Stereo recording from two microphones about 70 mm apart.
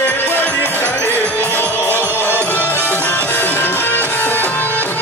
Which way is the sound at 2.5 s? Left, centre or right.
Left.